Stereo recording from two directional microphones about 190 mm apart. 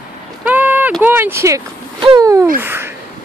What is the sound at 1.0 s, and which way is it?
Speech, 10° right (ahead or behind).